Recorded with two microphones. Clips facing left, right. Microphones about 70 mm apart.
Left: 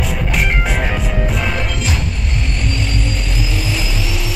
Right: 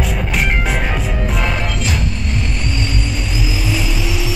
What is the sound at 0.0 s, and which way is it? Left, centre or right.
Music, centre.